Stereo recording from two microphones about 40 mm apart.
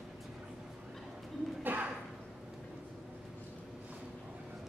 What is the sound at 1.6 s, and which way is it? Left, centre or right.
Bird, right.